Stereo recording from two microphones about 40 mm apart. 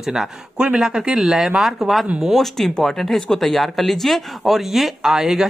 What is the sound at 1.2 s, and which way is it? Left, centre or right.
Speech, centre.